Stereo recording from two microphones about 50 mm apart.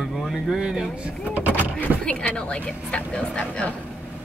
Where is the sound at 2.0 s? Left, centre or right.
Left.